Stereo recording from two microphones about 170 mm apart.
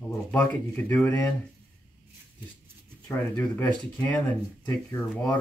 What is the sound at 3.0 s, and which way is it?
Speech, 10° left (ahead or behind).